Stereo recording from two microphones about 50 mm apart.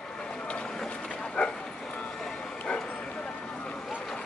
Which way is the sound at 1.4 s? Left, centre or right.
Left.